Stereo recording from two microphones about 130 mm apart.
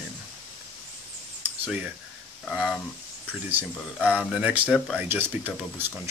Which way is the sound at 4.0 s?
5° left (ahead or behind).